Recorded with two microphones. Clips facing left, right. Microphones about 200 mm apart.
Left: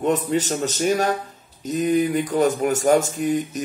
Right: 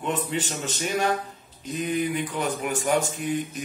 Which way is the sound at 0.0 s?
40° left (ahead or behind).